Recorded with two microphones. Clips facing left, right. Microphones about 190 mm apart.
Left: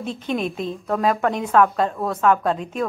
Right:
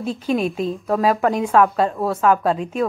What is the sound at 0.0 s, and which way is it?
A woman's voice, 5° right (ahead or behind).